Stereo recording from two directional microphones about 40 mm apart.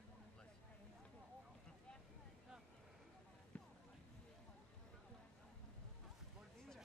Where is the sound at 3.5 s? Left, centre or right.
Left.